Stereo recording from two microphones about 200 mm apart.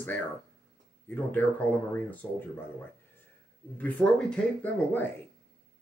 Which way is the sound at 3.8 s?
5° left (ahead or behind).